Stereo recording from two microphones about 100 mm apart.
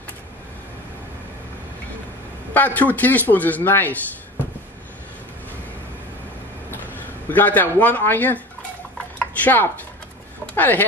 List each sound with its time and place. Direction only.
2.5 s speech: 15° left (ahead or behind)
6.7 s speech: 20° left (ahead or behind)
9.2 s chopping: 15° left (ahead or behind)
10.5 s speech: 20° left (ahead or behind)